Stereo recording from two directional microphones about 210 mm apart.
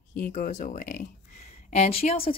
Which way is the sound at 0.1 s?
40° left (ahead or behind).